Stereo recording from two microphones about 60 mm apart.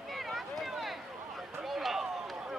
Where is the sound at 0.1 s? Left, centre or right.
Centre.